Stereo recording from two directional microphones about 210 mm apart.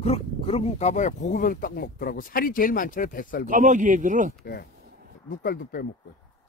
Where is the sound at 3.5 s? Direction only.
35° right (ahead or behind).